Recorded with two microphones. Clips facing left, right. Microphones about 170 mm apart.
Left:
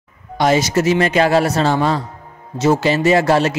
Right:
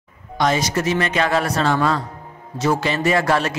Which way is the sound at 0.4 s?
30° left (ahead or behind).